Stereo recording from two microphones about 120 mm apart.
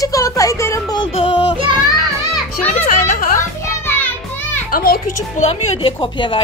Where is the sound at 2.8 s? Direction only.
90° left.